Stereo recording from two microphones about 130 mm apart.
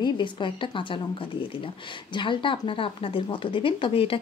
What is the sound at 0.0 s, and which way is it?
Speech, 40° left (ahead or behind).